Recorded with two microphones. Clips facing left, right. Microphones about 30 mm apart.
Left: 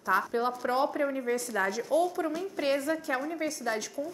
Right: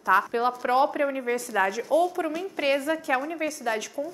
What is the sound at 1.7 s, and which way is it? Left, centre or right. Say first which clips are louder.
Speech: right 4 dB; right.